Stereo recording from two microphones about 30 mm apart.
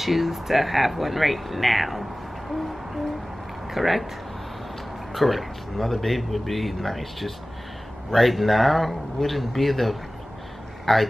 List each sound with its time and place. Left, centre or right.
0.0 s speech: centre
5.1 s speech: centre
10.9 s speech: centre